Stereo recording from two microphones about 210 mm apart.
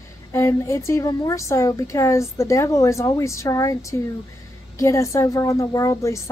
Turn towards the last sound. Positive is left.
turn(degrees=15)  # may be behind; listen again after turning